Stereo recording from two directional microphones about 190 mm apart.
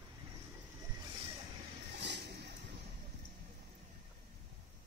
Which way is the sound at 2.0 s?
65° right (ahead or behind).